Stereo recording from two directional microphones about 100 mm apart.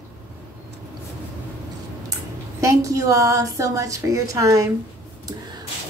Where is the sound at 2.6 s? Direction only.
30° right (ahead or behind).